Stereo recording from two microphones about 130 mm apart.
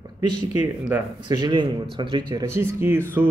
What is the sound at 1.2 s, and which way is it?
Speech, 35° right (ahead or behind).